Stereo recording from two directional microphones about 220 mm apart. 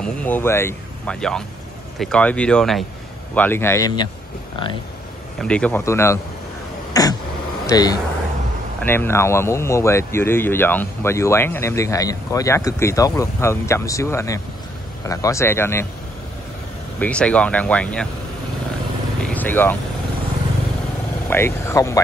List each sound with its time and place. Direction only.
0.0 s speech: 5° left (ahead or behind)
5.4 s speech: 5° left (ahead or behind)
6.9 s throat clearing: 15° left (ahead or behind)
7.6 s speech: 15° left (ahead or behind)
17.0 s speech: 5° left (ahead or behind)
19.2 s vehicle: 10° left (ahead or behind)
21.3 s speech: 10° left (ahead or behind)